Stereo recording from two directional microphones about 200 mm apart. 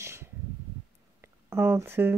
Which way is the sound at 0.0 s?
15° right (ahead or behind).